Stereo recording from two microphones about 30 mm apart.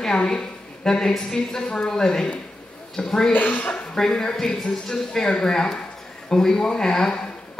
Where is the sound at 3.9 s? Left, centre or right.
Left.